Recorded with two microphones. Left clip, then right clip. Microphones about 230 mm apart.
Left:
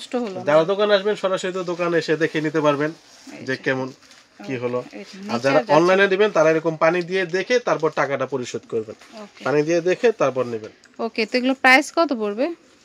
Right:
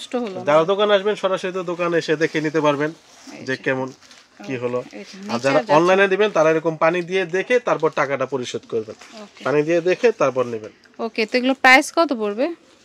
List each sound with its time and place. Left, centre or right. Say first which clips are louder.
0.1 s speech: right 1 dB; centre
11.2 s speech: right 2 dB; centre